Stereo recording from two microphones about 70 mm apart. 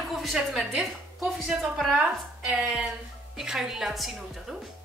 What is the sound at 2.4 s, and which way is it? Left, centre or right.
A woman's voice, centre.